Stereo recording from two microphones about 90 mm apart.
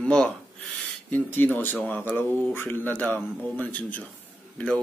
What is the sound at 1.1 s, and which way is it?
Speech, 20° left (ahead or behind).